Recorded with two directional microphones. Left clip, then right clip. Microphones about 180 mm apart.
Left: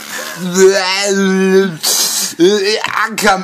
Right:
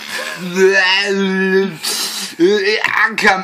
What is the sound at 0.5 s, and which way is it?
Speech, 50° left (ahead or behind).